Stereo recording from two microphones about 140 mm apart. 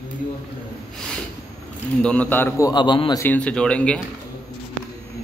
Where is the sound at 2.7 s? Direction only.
35° left (ahead or behind).